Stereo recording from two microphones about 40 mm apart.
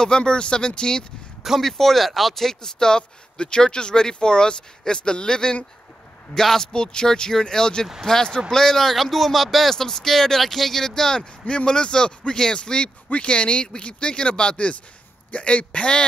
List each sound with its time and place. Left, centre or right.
0.0 s speech: left
1.6 s speech: centre
11.4 s speech: left